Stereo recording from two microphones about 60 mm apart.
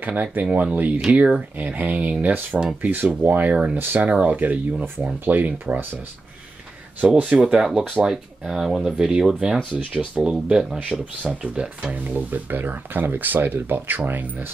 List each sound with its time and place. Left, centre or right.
0.0 s speech: right
4.1 s speech: right
7.0 s speech: right
10.5 s speech: centre
11.4 s speech: centre